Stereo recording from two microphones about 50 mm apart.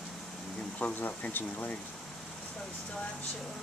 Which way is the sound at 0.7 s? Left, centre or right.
Left.